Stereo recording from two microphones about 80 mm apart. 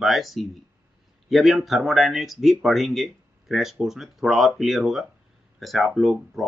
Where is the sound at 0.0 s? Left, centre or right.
Centre.